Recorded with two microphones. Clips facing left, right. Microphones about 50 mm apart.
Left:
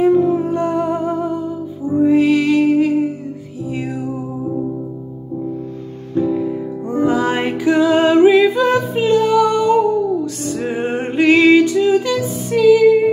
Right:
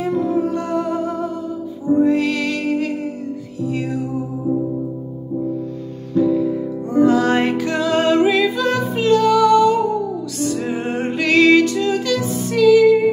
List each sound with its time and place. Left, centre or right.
0.0 s music: left
6.1 s music: left